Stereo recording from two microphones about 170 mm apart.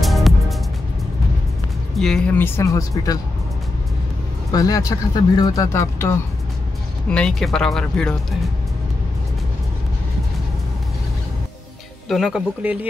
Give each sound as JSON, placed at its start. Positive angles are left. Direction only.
{"t": 0.0, "sound": "music", "side_deg": 0}
{"t": 2.0, "sound": "speech", "side_deg": 5}
{"t": 4.5, "sound": "speech", "side_deg": 20}
{"t": 7.1, "sound": "speech", "side_deg": 5}
{"t": 12.1, "sound": "speech", "side_deg": -5}